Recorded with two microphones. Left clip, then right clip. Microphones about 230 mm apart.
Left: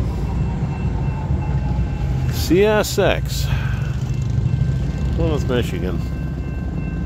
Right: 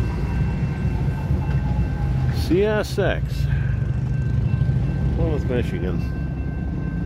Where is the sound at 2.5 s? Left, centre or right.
Centre.